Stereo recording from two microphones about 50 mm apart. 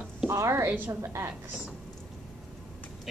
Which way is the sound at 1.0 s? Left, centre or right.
Right.